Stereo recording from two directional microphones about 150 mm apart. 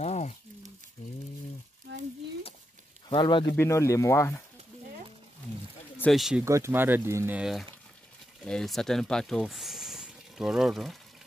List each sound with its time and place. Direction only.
0.0 s a sound: 50° left (ahead or behind)
3.1 s speech: 30° left (ahead or behind)
3.5 s speech: 20° left (ahead or behind)
6.1 s speech: centre (ahead or behind)
6.4 s speech: 20° right (ahead or behind); by 11.0 s centre (ahead or behind)